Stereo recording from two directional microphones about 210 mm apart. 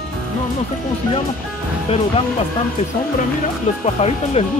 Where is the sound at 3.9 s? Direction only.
30° left (ahead or behind).